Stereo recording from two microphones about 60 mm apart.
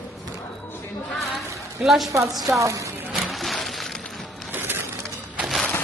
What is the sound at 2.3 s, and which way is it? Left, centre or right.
Speech, centre.